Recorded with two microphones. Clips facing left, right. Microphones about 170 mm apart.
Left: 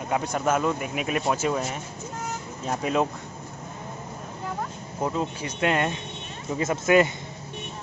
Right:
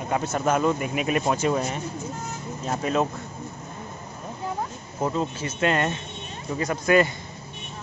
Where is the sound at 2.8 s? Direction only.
10° left (ahead or behind).